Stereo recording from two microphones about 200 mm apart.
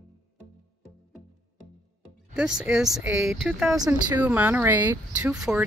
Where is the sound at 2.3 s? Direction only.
5° right (ahead or behind).